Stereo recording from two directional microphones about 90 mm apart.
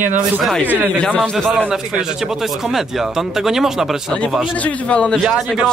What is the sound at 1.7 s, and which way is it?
Speech, 10° right (ahead or behind).